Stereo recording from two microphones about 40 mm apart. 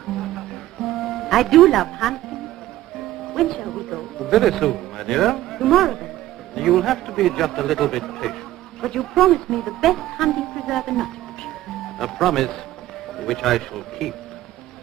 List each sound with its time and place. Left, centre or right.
0.8 s music: centre
3.3 s speech: centre